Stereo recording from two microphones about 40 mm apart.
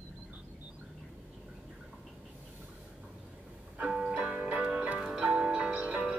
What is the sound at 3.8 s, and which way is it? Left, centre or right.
Music, centre.